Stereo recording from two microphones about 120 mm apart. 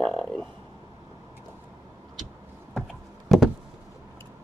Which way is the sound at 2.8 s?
Centre (ahead or behind).